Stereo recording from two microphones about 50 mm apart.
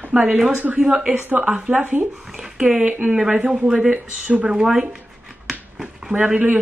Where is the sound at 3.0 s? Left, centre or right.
Centre.